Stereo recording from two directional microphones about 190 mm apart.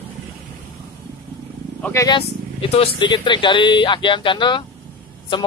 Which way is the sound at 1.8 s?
15° left (ahead or behind).